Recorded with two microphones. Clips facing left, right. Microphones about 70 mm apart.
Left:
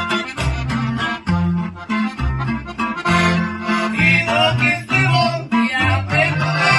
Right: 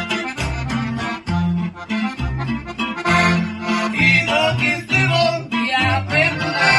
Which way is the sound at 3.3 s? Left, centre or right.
Left.